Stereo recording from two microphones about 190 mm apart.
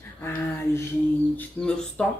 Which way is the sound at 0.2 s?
10° left (ahead or behind).